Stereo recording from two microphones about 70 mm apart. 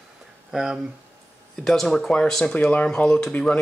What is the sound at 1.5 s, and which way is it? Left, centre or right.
Speech, centre.